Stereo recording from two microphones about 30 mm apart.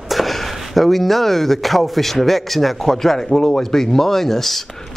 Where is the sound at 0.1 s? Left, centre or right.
Centre.